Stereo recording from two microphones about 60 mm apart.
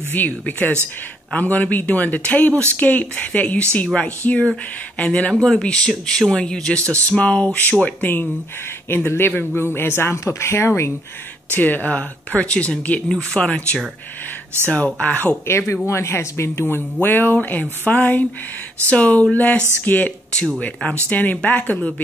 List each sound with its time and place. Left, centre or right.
0.1 s speech: left
8.8 s speech: left
9.8 s speech: left
11.5 s speech: left
15.4 s speech: left
21.1 s speech: left